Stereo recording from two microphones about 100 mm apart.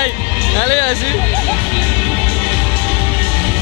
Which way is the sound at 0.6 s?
25° left (ahead or behind).